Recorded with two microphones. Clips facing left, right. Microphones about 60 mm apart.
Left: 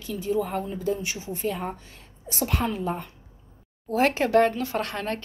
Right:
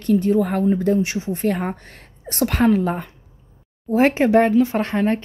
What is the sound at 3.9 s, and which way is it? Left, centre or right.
Speech, right.